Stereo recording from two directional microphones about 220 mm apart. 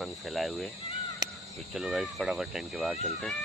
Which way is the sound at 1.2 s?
20° right (ahead or behind).